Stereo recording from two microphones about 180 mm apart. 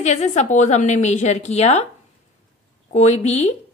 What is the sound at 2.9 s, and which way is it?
Speech, 40° left (ahead or behind).